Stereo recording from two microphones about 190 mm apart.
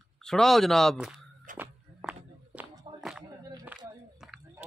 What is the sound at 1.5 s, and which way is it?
Walk, 5° right (ahead or behind).